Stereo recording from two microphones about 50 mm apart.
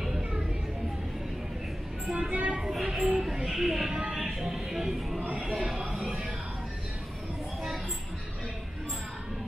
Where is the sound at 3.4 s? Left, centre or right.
Centre.